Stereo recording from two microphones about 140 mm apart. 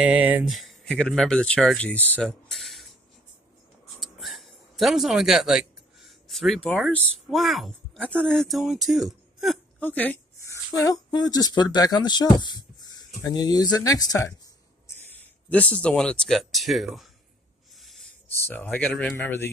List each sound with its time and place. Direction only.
0.0 s speech: 10° right (ahead or behind)
0.5 s speech: centre (ahead or behind)
4.0 s speech: centre (ahead or behind)
9.8 s a sound: 10° left (ahead or behind)
10.8 s speech: 30° left (ahead or behind)
15.0 s speech: 10° left (ahead or behind)
17.7 s a sound: centre (ahead or behind)
18.4 s speech: 10° left (ahead or behind)